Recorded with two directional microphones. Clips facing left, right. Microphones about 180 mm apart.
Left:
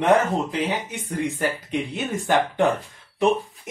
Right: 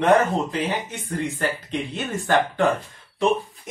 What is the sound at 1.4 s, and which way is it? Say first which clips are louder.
Speech: left 1 dB; 10° left (ahead or behind).